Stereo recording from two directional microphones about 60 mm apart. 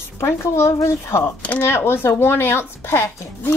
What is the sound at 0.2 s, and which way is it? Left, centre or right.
Speech, left.